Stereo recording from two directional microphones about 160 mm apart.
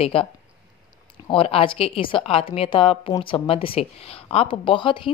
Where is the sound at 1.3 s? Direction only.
35° left (ahead or behind).